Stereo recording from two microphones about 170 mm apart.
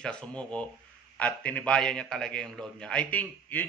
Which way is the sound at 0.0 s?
5° left (ahead or behind).